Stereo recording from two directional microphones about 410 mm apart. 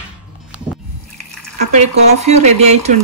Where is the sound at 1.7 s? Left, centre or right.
Centre.